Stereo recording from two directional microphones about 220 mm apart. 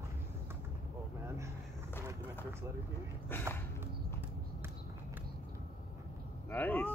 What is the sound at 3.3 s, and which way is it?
Speech, 10° left (ahead or behind).